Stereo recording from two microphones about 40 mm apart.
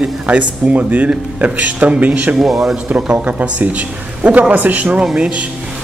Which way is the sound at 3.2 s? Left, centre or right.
Right.